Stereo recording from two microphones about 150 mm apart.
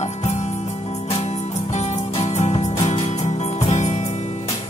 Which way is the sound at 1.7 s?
45° left (ahead or behind).